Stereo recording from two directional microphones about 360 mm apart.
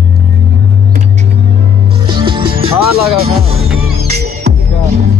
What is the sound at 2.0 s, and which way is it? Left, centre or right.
Music, centre.